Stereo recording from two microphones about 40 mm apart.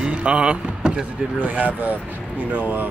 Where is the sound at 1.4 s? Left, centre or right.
Right.